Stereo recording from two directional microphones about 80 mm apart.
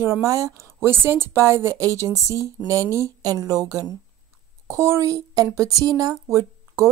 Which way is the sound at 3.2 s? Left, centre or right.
Right.